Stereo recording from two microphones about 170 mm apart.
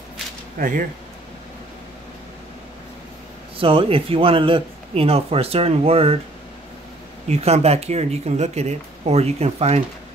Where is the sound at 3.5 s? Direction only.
30° right (ahead or behind).